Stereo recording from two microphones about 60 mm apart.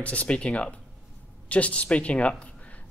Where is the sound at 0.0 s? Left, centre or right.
Left.